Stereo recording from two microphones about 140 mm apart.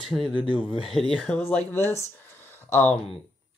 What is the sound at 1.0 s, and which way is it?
Speech, 5° left (ahead or behind).